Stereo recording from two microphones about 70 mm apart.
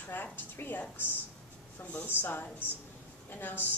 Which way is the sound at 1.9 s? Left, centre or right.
Left.